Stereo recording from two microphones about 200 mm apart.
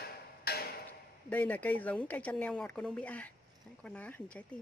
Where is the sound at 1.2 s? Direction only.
10° left (ahead or behind).